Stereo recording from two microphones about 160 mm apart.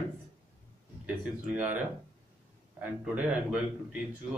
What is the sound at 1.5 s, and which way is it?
Speech, 10° right (ahead or behind).